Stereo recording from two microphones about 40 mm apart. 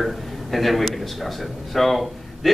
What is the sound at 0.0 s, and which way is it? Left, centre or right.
A man's voice, centre.